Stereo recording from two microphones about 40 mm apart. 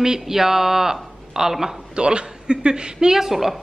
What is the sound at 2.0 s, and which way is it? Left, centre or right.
Speech, right.